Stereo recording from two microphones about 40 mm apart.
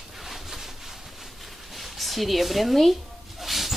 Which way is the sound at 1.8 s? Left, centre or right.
Centre.